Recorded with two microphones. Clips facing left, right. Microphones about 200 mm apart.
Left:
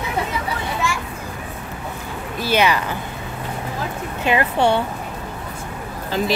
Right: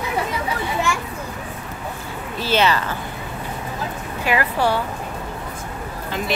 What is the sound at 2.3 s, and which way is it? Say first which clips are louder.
Speech: left 1 dB; 15° left (ahead or behind).